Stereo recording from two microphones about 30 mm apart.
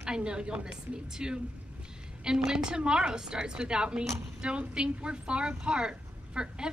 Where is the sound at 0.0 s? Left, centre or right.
Right.